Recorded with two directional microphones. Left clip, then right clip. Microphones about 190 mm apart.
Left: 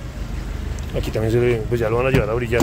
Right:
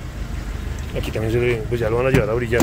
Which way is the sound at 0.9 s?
20° left (ahead or behind).